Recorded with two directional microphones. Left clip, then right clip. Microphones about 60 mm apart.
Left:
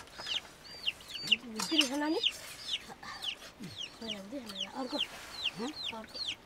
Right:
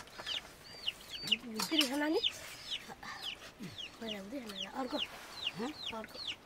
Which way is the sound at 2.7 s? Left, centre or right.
Left.